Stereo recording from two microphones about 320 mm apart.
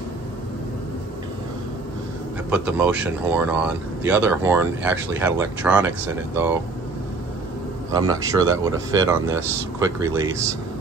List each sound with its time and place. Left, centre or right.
2.5 s speech: centre
7.9 s speech: centre